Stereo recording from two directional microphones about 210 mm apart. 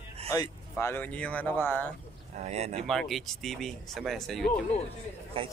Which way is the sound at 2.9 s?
Centre (ahead or behind).